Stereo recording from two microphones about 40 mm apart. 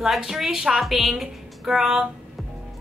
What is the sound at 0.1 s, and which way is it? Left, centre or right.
A woman's voice, centre.